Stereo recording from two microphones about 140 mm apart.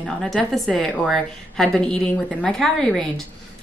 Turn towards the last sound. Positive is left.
turn(degrees=0)  # may be behind; listen again after turning